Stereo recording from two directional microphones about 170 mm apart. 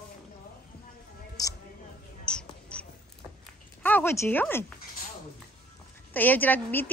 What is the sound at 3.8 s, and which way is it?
Speech, 10° left (ahead or behind).